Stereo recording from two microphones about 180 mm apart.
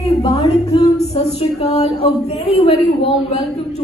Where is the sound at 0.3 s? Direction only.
35° left (ahead or behind).